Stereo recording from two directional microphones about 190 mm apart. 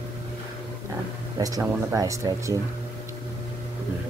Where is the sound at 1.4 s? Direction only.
15° right (ahead or behind).